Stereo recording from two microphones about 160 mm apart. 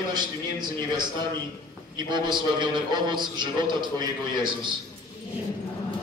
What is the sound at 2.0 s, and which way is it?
A man's voice, 30° right (ahead or behind).